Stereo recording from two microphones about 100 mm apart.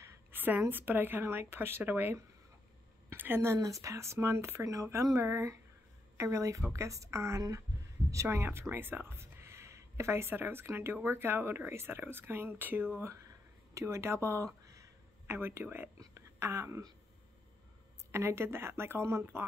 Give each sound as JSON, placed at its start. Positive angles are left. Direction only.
{"t": 0.0, "sound": "a woman's voice", "side_deg": -20}
{"t": 3.1, "sound": "a sound", "side_deg": -20}
{"t": 3.5, "sound": "a woman's voice", "side_deg": -35}
{"t": 18.1, "sound": "speech", "side_deg": -25}